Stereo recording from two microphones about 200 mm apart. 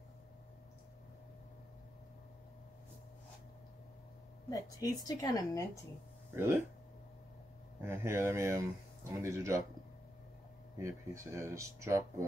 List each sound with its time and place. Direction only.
4.5 s a woman's voice: 15° left (ahead or behind)
6.3 s speech: 10° right (ahead or behind)
7.8 s speech: 10° right (ahead or behind)
10.8 s speech: 15° right (ahead or behind)